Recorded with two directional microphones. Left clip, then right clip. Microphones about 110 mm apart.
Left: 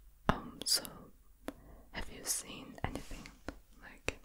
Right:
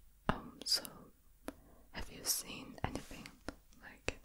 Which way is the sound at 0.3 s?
10° left (ahead or behind).